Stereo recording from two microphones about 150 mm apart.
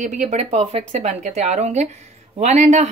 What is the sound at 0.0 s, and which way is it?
Speech, 55° right (ahead or behind).